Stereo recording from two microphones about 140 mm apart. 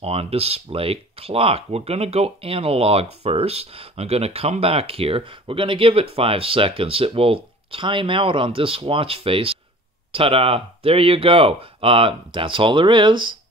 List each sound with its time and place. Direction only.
0.0 s speech: 45° right (ahead or behind)